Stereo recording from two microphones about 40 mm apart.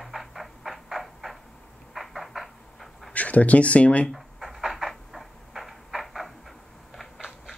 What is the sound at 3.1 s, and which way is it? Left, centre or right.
Speech, left.